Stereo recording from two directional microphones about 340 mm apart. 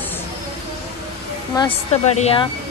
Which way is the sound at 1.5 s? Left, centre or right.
Centre.